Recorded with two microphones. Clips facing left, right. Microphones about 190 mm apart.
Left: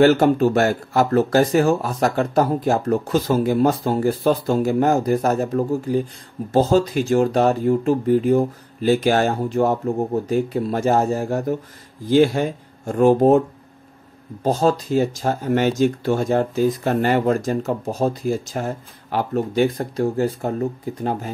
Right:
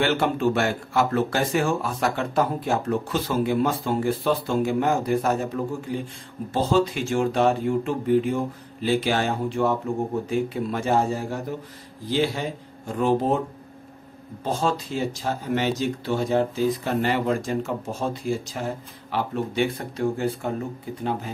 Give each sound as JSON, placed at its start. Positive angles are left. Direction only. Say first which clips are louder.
{"t": 0.0, "sound": "speech", "louder": "left 8 dB", "side_deg": 40}
{"t": 14.4, "sound": "speech", "louder": "left 7 dB", "side_deg": 40}